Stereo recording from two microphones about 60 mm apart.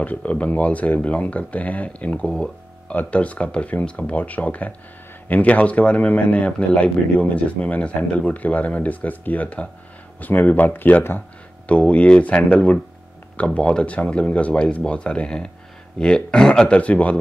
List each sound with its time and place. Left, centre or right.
0.0 s speech: left